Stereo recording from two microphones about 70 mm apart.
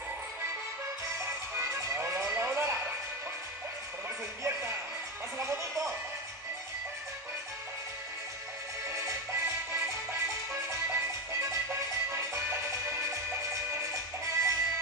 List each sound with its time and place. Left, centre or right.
1.2 s music: right
4.4 s music: right
8.8 s music: right
14.2 s music: right